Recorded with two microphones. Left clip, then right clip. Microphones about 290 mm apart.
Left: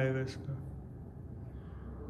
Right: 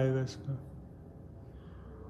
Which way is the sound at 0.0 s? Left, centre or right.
Centre.